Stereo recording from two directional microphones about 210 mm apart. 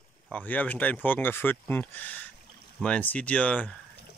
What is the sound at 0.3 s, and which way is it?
Speech, 10° left (ahead or behind).